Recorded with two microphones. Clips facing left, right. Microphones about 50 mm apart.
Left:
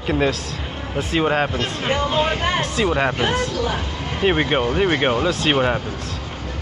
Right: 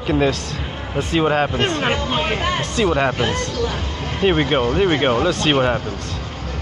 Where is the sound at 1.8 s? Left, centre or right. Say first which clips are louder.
Left 1 dB; right.